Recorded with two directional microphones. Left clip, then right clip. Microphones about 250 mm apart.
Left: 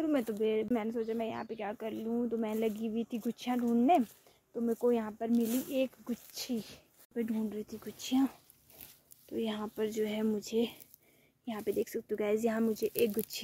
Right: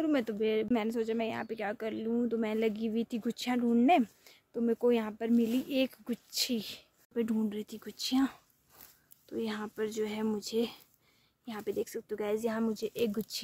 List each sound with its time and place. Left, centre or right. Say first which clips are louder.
0.0 s speech: right 1 dB; centre